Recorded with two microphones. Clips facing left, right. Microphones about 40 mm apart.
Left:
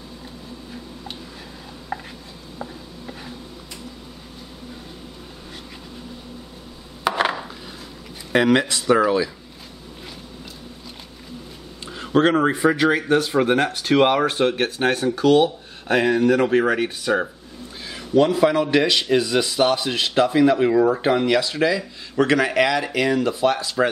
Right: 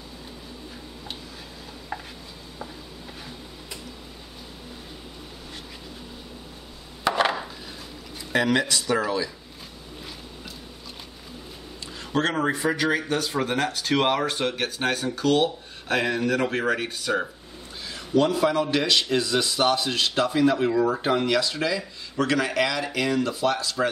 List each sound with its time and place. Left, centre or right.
7.1 s a sound: centre
8.3 s speech: left
11.9 s speech: left
15.0 s a man's voice: centre